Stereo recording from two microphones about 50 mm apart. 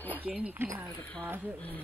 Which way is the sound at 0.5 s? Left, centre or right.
Right.